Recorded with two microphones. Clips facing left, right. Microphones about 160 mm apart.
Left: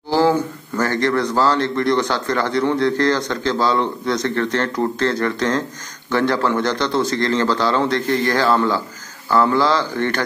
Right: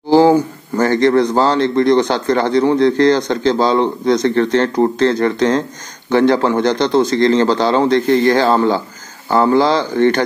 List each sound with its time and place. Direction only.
0.3 s a man's voice: 20° right (ahead or behind)